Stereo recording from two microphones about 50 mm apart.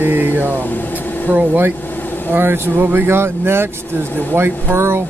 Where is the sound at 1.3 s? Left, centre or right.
Right.